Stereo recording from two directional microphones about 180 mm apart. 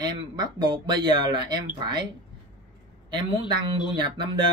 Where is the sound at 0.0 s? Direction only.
25° right (ahead or behind).